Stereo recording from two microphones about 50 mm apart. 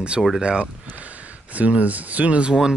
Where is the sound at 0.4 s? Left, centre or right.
Centre.